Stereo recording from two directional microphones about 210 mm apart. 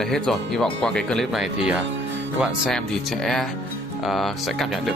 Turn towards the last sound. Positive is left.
turn(degrees=0)  # may be behind; listen again after turning